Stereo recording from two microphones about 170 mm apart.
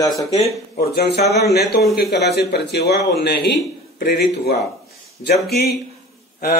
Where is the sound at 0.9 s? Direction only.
70° left (ahead or behind).